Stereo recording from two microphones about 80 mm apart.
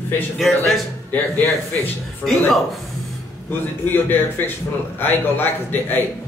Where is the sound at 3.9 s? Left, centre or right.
Left.